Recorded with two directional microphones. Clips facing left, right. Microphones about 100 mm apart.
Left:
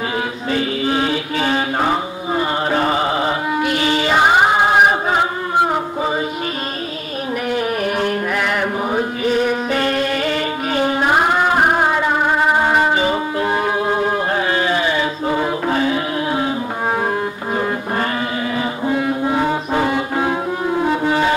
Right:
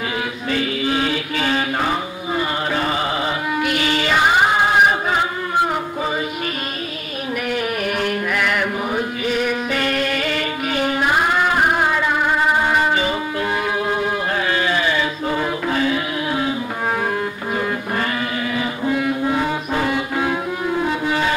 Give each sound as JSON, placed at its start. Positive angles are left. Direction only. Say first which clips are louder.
{"t": 0.5, "sound": "mantra", "louder": "left 2 dB", "side_deg": 30}
{"t": 7.5, "sound": "chant", "louder": "left 3 dB", "side_deg": 30}
{"t": 18.9, "sound": "music", "louder": "left 1 dB", "side_deg": 30}